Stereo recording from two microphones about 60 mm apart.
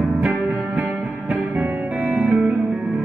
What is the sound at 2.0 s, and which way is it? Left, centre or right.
Music, centre.